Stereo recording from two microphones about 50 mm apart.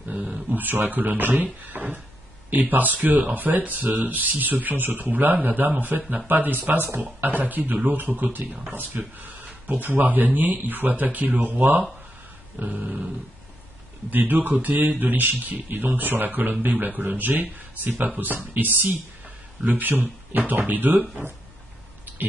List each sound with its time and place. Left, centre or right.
0.1 s speech: right
12.8 s dog: centre
14.1 s speech: right